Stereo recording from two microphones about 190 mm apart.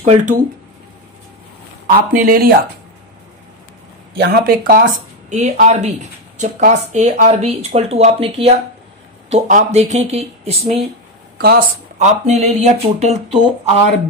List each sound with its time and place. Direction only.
0.0 s speech: 40° right (ahead or behind)
1.9 s speech: 45° right (ahead or behind)
4.2 s speech: 50° right (ahead or behind)
5.3 s speech: 40° right (ahead or behind)
11.3 s speech: 55° right (ahead or behind)
12.0 s speech: 35° right (ahead or behind)